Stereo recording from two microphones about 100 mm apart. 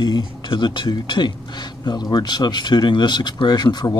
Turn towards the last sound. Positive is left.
turn(degrees=45)  # may be behind; listen again after turning